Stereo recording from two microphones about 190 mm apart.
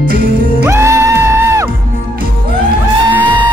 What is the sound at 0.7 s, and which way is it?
Music, 15° right (ahead or behind).